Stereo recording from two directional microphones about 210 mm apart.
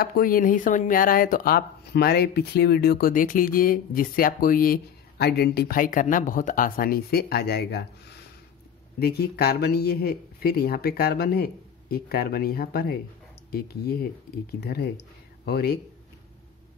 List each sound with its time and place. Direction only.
0.0 s speech: 45° left (ahead or behind)
9.0 s speech: 50° left (ahead or behind)